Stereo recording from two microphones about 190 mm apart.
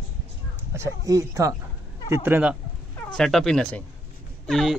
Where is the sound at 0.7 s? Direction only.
15° right (ahead or behind).